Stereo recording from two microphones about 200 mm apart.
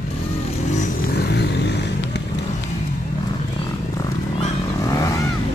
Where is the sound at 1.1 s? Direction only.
55° left (ahead or behind).